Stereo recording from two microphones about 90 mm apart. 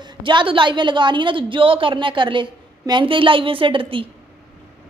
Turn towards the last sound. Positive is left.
turn(degrees=-75)  # may be behind; listen again after turning